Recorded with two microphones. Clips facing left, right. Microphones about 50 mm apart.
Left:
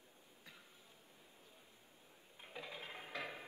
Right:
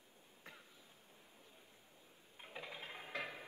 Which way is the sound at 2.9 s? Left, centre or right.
Right.